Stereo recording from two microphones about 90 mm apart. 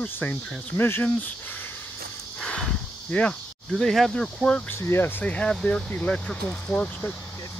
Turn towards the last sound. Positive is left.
turn(degrees=20)  # may be behind; listen again after turning